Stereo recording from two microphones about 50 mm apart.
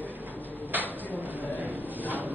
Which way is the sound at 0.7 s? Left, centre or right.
Right.